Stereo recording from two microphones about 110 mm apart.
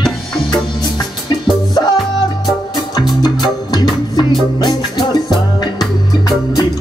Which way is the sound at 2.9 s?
40° left (ahead or behind).